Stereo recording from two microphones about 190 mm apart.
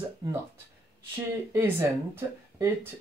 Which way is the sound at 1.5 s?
15° right (ahead or behind).